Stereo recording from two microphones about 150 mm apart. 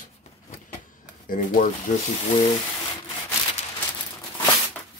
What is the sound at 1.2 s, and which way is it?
Speech, 70° left (ahead or behind).